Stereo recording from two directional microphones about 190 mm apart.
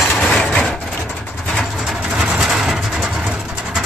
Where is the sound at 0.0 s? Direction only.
Centre (ahead or behind).